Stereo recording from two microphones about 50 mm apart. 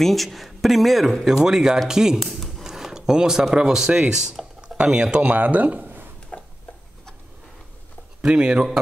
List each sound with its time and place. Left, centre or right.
0.0 s speech: centre
2.1 s a sound: centre
3.5 s speech: centre
5.2 s speech: right
6.3 s a sound: left
8.2 s speech: centre